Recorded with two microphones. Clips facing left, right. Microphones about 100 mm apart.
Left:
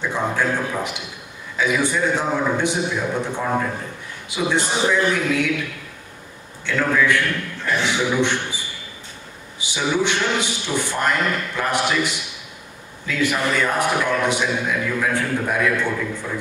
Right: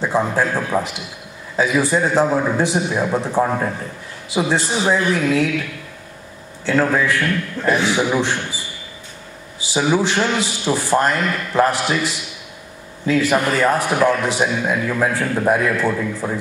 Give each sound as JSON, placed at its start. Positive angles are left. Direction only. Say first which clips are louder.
{"t": 0.0, "sound": "a man's voice", "louder": "right 4 dB", "side_deg": -35}
{"t": 6.6, "sound": "a man's voice", "louder": "right 3 dB", "side_deg": -35}
{"t": 9.7, "sound": "a man's voice", "louder": "right 3 dB", "side_deg": -35}